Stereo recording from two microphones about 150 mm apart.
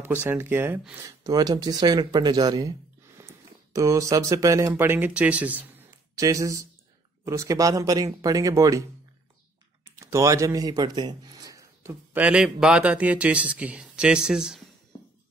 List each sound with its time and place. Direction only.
0.0 s speech: 15° right (ahead or behind)
1.2 s speech: 25° right (ahead or behind)
9.9 s speech: 20° right (ahead or behind); by 14.7 s 5° right (ahead or behind)